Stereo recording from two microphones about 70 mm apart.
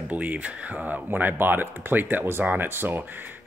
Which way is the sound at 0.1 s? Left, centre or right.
Right.